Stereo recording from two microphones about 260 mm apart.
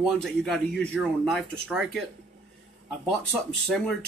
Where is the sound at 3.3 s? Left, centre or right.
Centre.